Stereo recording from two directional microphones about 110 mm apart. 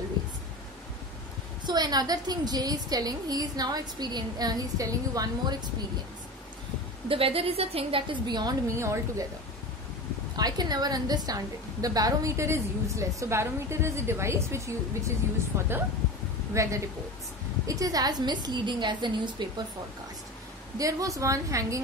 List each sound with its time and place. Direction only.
1.7 s a woman's voice: 40° right (ahead or behind)
7.1 s a woman's voice: 60° right (ahead or behind)
8.3 s a woman's voice: 40° right (ahead or behind)
10.3 s a woman's voice: 40° right (ahead or behind)
20.7 s a woman's voice: 30° right (ahead or behind)